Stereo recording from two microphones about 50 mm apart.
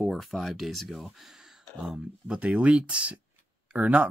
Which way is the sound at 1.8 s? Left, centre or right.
Right.